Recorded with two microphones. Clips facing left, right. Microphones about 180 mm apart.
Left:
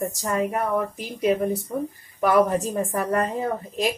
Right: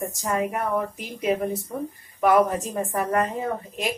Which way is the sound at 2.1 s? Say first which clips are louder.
Even; 40° left (ahead or behind).